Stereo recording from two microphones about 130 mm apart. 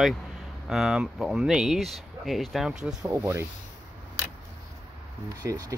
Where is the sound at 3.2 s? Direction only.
20° right (ahead or behind).